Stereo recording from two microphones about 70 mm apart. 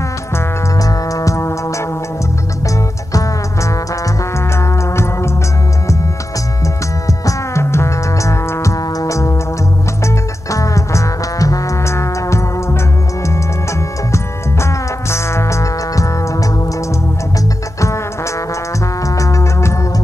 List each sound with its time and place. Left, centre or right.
0.7 s music: left
3.1 s music: left
4.6 s music: left
7.1 s music: left
14.1 s music: left
17.7 s music: left
19.0 s music: left